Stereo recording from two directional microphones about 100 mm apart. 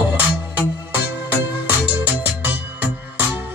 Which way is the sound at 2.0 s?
15° right (ahead or behind).